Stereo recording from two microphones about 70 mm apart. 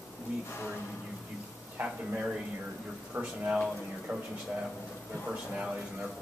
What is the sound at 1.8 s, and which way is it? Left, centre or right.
Speech, centre.